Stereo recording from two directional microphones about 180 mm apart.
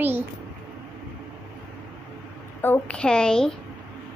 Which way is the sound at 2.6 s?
10° left (ahead or behind).